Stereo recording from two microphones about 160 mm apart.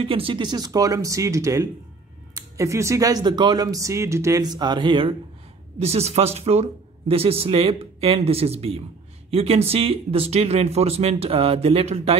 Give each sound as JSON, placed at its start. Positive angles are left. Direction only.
{"t": 0.0, "sound": "speech", "side_deg": -35}
{"t": 5.8, "sound": "speech", "side_deg": -40}